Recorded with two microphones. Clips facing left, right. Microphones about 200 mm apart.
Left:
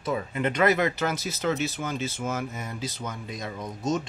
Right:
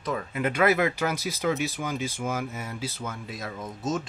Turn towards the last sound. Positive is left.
turn(degrees=-5)  # may be behind; listen again after turning